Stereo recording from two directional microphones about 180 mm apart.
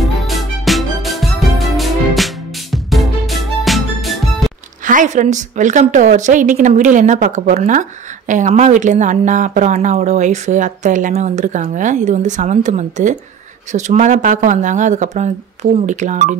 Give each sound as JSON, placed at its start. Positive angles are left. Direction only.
{"t": 0.0, "sound": "music", "side_deg": 0}
{"t": 4.8, "sound": "speech", "side_deg": -45}